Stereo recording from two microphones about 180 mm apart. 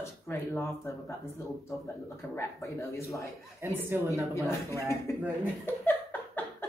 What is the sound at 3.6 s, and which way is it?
Speech, 15° right (ahead or behind).